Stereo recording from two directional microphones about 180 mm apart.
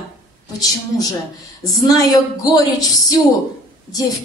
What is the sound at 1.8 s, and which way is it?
A woman's voice, 20° left (ahead or behind).